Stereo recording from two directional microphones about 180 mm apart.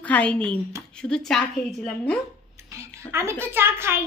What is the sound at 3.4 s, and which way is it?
Speech, 15° right (ahead or behind).